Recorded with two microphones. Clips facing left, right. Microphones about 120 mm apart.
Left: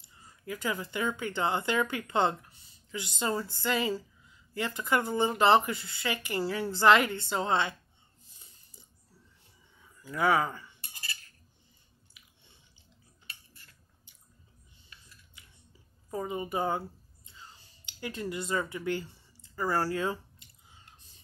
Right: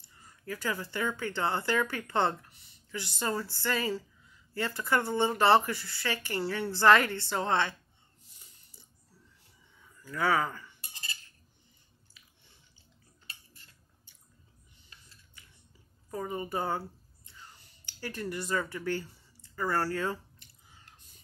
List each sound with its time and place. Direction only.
0.5 s a woman's voice: 15° left (ahead or behind)
10.0 s a woman's voice: 20° left (ahead or behind)
10.8 s cutlery: 25° right (ahead or behind)
12.2 s biting: 15° left (ahead or behind)
13.3 s cutlery: 25° right (ahead or behind)
14.9 s a sound: 30° right (ahead or behind)
16.1 s speech: 20° left (ahead or behind)
17.3 s a sound: 20° left (ahead or behind)
19.5 s a woman's voice: 15° left (ahead or behind)
20.6 s chewing: 20° left (ahead or behind)